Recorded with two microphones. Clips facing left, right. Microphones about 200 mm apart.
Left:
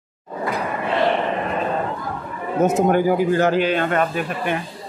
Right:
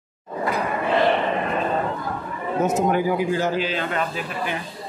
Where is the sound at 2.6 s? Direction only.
50° left (ahead or behind).